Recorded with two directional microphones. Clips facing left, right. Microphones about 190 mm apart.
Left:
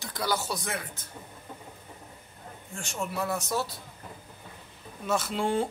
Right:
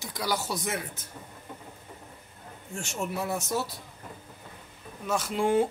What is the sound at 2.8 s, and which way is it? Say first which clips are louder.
Speech: even; 25° right (ahead or behind).